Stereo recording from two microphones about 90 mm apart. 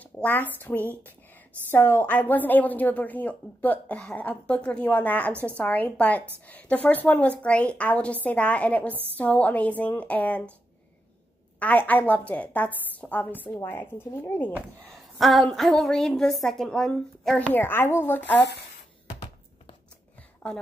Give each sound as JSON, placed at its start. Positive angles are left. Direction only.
{"t": 0.0, "sound": "a woman's voice", "side_deg": 20}
{"t": 11.6, "sound": "a woman's voice", "side_deg": 20}
{"t": 14.9, "sound": "a woman's voice", "side_deg": 0}
{"t": 17.5, "sound": "a woman's voice", "side_deg": 25}
{"t": 20.4, "sound": "a woman's voice", "side_deg": 10}